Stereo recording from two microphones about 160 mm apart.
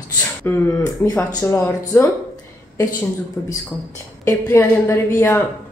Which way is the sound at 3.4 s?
10° left (ahead or behind).